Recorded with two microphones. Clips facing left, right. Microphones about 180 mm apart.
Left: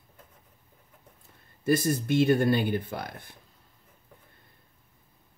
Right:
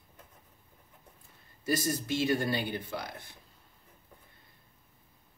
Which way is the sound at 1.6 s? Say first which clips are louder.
Left 6 dB; 55° left (ahead or behind).